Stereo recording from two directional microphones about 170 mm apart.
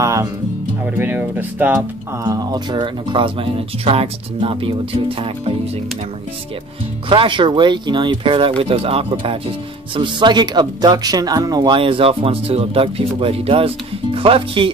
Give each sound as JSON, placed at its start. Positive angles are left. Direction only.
{"t": 0.0, "sound": "music", "side_deg": -20}
{"t": 0.8, "sound": "speech", "side_deg": -10}
{"t": 2.2, "sound": "speech", "side_deg": -25}
{"t": 7.1, "sound": "speech", "side_deg": -30}